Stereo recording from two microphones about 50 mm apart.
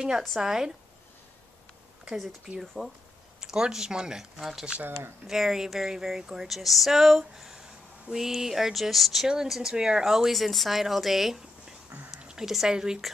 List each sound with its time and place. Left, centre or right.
0.4 s speech: centre
2.0 s speech: centre
12.2 s a sound: centre
12.4 s speech: centre